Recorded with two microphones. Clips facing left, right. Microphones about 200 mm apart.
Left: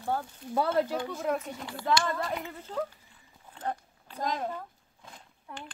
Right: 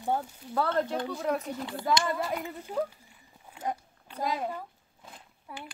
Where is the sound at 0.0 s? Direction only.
15° right (ahead or behind).